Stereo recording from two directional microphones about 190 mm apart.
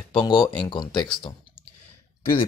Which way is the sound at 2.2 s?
50° left (ahead or behind).